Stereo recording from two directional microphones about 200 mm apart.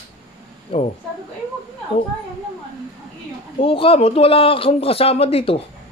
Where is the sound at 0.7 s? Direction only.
30° left (ahead or behind).